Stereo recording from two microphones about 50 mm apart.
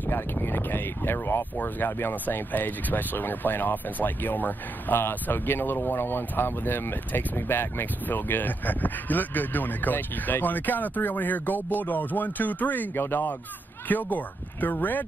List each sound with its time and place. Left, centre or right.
0.0 s speech: left